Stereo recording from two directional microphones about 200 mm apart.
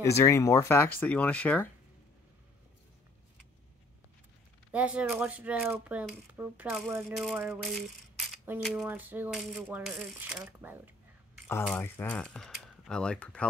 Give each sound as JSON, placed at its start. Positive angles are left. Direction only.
{"t": 0.0, "sound": "speech", "side_deg": 15}
{"t": 4.7, "sound": "speech", "side_deg": -5}
{"t": 11.7, "sound": "speech", "side_deg": 10}